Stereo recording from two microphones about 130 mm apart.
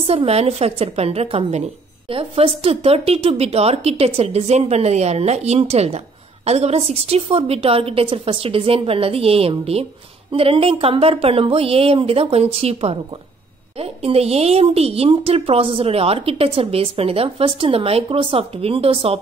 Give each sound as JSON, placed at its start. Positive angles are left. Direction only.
{"t": 0.0, "sound": "speech", "side_deg": -45}